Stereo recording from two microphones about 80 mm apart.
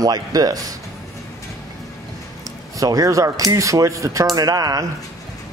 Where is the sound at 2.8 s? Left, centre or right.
Right.